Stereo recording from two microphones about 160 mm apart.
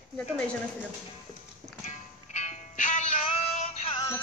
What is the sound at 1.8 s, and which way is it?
Music, 45° left (ahead or behind).